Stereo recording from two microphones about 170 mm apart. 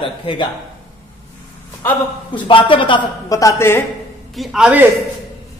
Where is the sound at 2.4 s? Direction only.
30° left (ahead or behind).